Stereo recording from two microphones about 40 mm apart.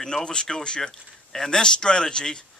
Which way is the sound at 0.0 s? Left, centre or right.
Centre.